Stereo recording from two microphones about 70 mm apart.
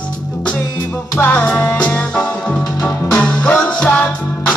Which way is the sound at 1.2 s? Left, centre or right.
Left.